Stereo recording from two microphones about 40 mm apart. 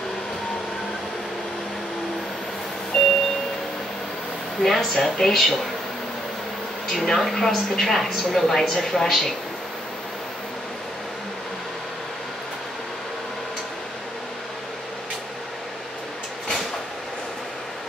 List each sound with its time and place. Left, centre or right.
2.9 s vehicle: centre
4.6 s a woman's voice: centre
6.9 s a woman's voice: centre